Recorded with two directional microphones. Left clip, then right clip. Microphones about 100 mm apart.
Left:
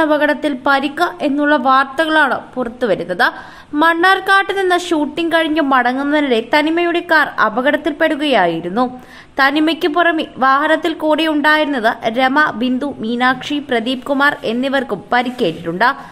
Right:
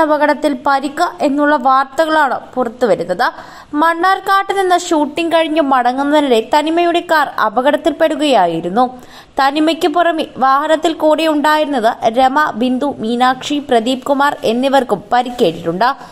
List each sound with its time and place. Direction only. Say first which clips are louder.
0.0 s a woman's voice: right 2 dB; 30° right (ahead or behind)